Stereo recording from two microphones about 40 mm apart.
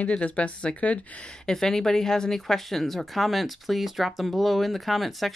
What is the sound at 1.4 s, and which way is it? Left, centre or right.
Speech, centre.